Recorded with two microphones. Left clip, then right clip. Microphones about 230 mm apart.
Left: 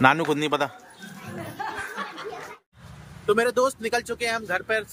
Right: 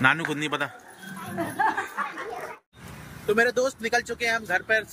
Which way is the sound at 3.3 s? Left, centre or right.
Centre.